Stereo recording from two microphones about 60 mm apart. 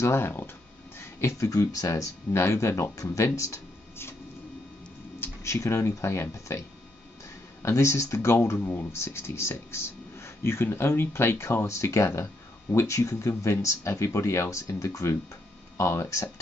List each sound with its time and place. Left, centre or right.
0.0 s speech: left
0.9 s a sound: left
1.5 s speech: left
2.3 s speech: left
5.4 s speech: left
7.6 s speech: left
15.8 s speech: left